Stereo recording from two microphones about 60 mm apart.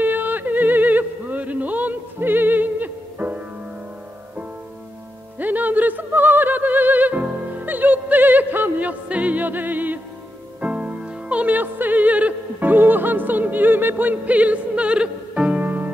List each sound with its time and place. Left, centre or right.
0.0 s music: right
5.4 s music: right
15.6 s music: right